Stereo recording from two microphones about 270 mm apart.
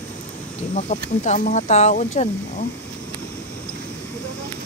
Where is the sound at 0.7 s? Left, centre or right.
Left.